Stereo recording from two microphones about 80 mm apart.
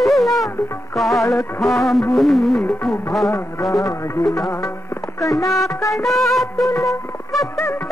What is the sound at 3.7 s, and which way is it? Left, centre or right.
Speech, left.